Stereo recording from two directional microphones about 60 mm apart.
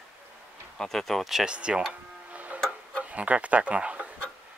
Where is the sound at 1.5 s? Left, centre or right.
Centre.